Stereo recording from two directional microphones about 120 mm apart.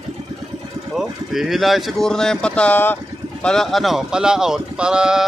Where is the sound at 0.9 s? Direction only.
5° right (ahead or behind); by 3.0 s 15° left (ahead or behind).